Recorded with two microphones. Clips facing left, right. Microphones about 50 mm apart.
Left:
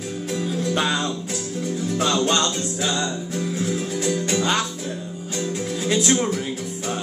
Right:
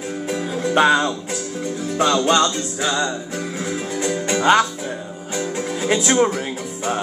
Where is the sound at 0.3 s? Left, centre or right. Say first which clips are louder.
Right 3 dB; right.